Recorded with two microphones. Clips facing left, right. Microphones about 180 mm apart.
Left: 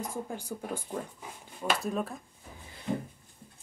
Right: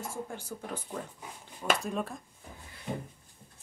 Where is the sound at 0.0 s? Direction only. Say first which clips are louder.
Left 2 dB; 15° left (ahead or behind).